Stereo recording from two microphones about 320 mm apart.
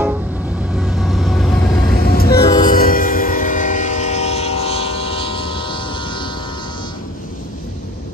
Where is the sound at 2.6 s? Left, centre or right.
Left.